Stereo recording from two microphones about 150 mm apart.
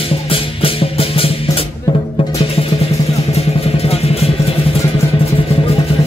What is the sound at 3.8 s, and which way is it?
Vehicle, 40° left (ahead or behind).